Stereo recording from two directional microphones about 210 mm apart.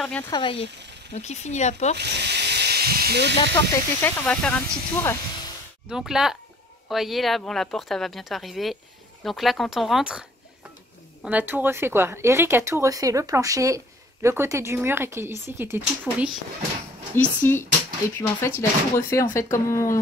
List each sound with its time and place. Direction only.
0.0 s speech: 5° left (ahead or behind)
0.3 s speech: 25° left (ahead or behind)
2.0 s speech: 50° right (ahead or behind)
4.0 s speech: 5° left (ahead or behind)
11.2 s speech: 10° right (ahead or behind)
17.1 s speech: 10° left (ahead or behind)